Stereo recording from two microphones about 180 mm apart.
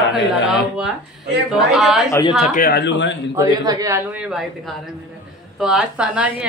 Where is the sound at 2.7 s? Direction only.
75° left (ahead or behind).